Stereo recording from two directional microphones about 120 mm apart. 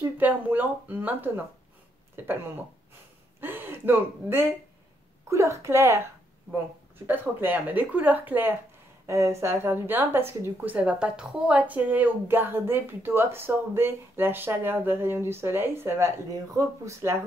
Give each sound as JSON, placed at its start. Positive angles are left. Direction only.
{"t": 0.0, "sound": "a woman's voice", "side_deg": -15}
{"t": 7.1, "sound": "a woman's voice", "side_deg": -15}